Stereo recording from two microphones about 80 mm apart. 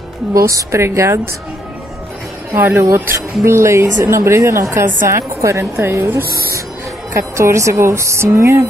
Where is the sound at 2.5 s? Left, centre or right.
Right.